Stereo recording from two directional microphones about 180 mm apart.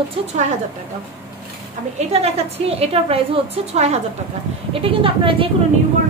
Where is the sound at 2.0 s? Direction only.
35° right (ahead or behind).